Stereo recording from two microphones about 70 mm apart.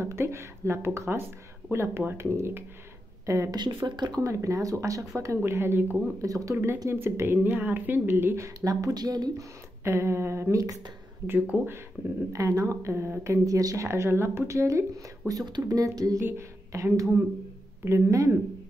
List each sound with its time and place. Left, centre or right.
0.0 s speech: right
3.5 s speech: right
4.2 s speech: right
5.2 s speech: right
6.2 s speech: right
6.5 s speech: right
8.5 s speech: right
9.4 s speech: right
11.2 s speech: right
12.3 s speech: right
16.2 s a woman's voice: right